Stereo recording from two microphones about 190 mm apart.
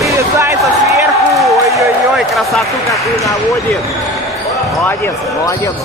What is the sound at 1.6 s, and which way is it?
Speech, 15° right (ahead or behind).